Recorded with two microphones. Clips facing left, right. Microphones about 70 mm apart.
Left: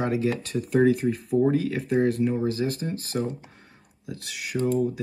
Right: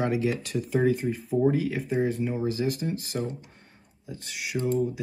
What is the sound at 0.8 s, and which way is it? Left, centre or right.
Speech, left.